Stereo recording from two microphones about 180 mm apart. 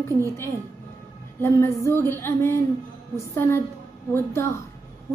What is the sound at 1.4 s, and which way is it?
A child's voice, 15° left (ahead or behind).